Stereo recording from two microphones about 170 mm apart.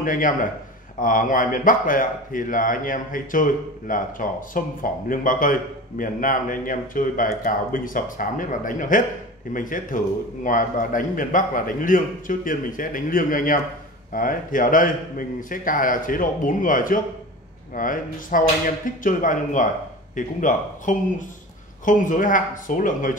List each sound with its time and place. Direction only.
0.0 s speech: 50° left (ahead or behind)